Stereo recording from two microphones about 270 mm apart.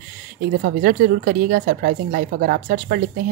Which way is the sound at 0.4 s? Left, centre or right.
Right.